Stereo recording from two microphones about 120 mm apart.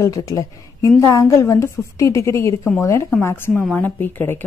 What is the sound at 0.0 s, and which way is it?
A woman's voice, 30° left (ahead or behind).